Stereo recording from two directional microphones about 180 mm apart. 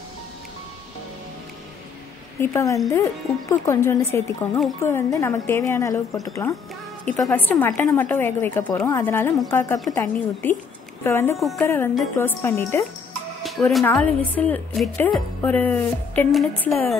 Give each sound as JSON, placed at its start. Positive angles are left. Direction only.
{"t": 2.4, "sound": "a woman's voice", "side_deg": 15}
{"t": 11.3, "sound": "a woman's voice", "side_deg": 0}
{"t": 11.6, "sound": "a woman's voice", "side_deg": 15}
{"t": 13.4, "sound": "a woman's voice", "side_deg": 0}